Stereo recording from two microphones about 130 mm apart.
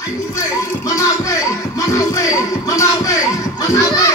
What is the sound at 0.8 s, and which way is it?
Music, 25° left (ahead or behind).